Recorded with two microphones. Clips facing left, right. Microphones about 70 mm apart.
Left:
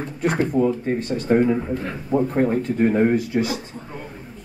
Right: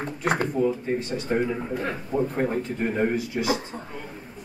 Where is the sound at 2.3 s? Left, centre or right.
Left.